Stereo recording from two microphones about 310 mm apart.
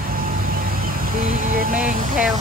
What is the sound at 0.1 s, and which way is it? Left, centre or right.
Vehicle, right.